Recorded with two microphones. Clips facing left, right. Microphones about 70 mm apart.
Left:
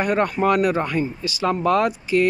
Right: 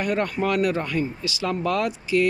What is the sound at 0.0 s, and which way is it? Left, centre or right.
Speech, left.